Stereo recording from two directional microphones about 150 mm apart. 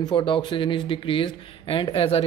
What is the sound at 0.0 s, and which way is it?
Speech, 35° left (ahead or behind).